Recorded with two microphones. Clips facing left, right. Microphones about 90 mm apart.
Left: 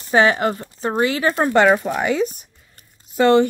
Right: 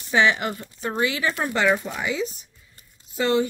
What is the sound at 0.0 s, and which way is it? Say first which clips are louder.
Speech: left 5 dB; 45° left (ahead or behind).